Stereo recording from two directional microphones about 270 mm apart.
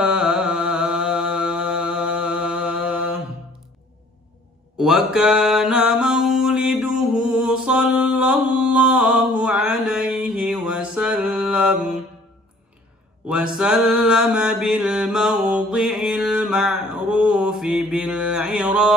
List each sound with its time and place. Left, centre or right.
0.0 s mantra: centre
4.7 s mantra: centre
13.3 s mantra: centre